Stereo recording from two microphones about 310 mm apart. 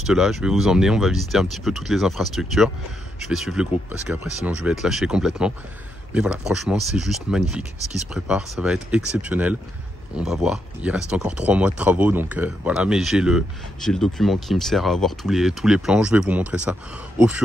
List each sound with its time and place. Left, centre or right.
0.0 s speech: centre